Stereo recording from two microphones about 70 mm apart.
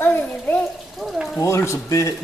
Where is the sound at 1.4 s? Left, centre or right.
Left.